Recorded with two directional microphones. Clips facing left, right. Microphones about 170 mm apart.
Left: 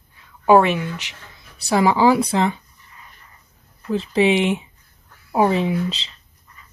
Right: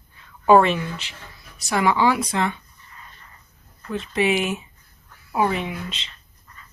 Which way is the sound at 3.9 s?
30° left (ahead or behind).